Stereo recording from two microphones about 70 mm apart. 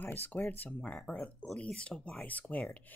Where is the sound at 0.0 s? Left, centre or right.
Left.